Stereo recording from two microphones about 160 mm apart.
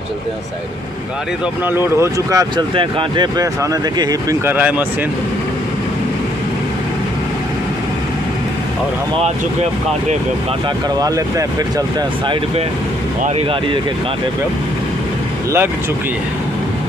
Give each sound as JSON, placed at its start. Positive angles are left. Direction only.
{"t": 1.7, "sound": "speech", "side_deg": -15}
{"t": 2.5, "sound": "speech", "side_deg": -30}
{"t": 4.6, "sound": "speech", "side_deg": -10}
{"t": 9.2, "sound": "speech", "side_deg": -45}
{"t": 11.0, "sound": "speech", "side_deg": -20}